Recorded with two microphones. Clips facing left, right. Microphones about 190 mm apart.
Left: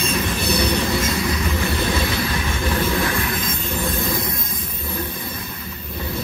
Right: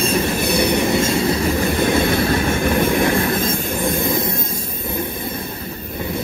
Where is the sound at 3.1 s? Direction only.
30° right (ahead or behind).